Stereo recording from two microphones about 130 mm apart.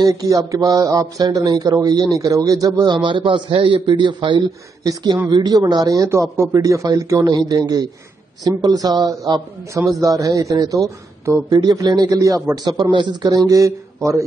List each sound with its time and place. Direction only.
0.0 s a man's voice: 30° right (ahead or behind)